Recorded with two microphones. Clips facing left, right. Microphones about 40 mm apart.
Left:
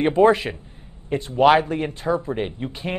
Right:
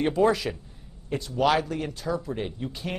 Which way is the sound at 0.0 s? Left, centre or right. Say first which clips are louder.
Left 6 dB; left.